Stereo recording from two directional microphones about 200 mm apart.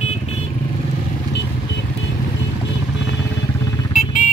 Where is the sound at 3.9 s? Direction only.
35° left (ahead or behind).